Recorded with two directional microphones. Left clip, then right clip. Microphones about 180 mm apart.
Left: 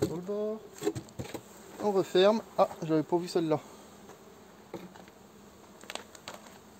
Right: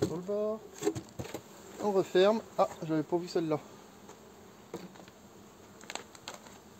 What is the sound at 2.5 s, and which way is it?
Speech, 50° left (ahead or behind).